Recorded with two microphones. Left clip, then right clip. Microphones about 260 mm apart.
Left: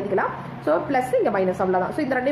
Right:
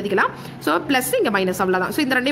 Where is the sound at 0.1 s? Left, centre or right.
Right.